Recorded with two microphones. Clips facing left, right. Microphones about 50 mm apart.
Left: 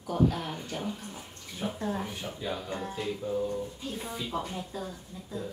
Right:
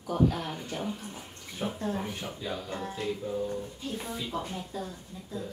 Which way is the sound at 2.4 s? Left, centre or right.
Centre.